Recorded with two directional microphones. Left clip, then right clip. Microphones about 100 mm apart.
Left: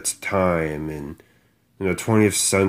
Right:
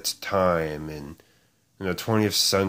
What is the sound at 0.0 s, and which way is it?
Speech, 5° right (ahead or behind).